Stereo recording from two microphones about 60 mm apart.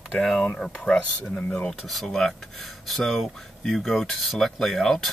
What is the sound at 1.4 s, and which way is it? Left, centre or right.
Burping, centre.